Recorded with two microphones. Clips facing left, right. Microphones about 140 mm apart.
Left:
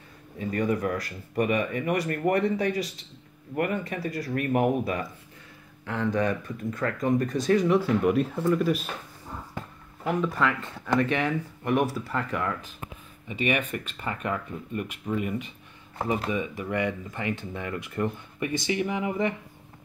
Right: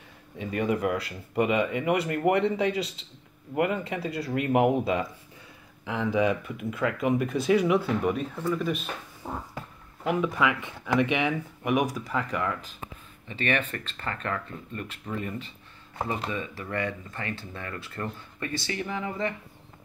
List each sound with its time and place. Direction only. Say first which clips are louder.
0.4 s speech: even; 20° right (ahead or behind)
5.9 s speech: right 1 dB; 5° right (ahead or behind)
9.2 s a sound: right 7 dB; 65° right (ahead or behind)
10.0 s speech: even; 5° right (ahead or behind)
11.9 s speech: even; centre (ahead or behind); by 19.3 s 20° left (ahead or behind)